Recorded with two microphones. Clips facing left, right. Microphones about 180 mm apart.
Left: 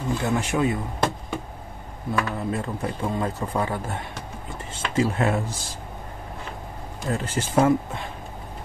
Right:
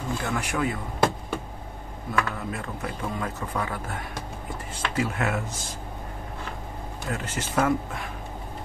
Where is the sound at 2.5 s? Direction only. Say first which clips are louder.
Left 5 dB; 30° left (ahead or behind).